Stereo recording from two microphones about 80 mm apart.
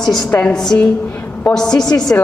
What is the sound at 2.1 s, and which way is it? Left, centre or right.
Speech, left.